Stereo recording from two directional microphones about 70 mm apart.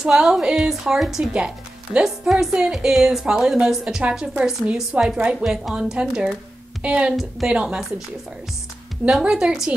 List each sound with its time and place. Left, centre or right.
0.0 s a woman's voice: centre
9.2 s a woman's voice: centre